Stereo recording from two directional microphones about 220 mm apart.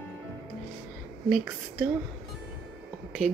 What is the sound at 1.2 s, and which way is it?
Speech, 5° right (ahead or behind).